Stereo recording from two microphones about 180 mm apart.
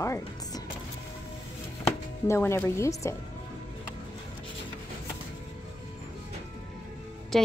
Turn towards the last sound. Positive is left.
turn(degrees=0)  # may be behind; listen again after turning